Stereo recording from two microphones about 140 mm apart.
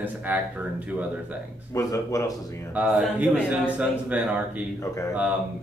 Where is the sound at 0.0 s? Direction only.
10° right (ahead or behind).